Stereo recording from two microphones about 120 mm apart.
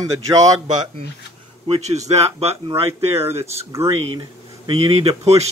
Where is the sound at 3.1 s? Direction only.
20° right (ahead or behind).